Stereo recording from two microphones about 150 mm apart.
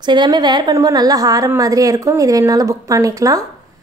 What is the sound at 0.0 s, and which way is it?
A woman's voice, 30° right (ahead or behind).